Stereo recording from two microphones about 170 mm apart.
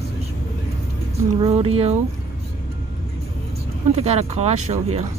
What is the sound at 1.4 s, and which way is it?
Speech, 35° right (ahead or behind).